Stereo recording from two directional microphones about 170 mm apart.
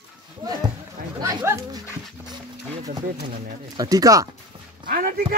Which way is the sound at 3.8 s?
20° right (ahead or behind).